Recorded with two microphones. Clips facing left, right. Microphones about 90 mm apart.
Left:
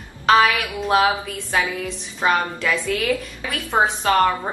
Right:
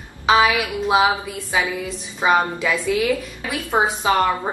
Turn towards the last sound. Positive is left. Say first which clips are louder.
# left 1 dB
turn(degrees=-10)  # may be behind; listen again after turning